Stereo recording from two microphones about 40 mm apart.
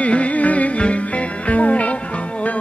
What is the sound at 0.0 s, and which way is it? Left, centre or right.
Music, left.